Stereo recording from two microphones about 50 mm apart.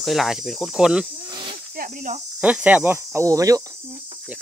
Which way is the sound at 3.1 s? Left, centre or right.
Right.